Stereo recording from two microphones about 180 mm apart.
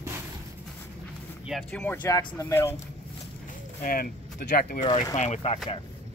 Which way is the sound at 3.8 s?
55° left (ahead or behind).